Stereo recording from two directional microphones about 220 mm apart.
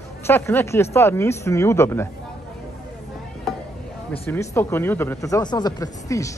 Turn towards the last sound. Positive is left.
turn(degrees=15)  # may be behind; listen again after turning